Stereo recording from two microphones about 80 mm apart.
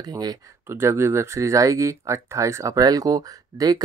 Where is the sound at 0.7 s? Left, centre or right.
Right.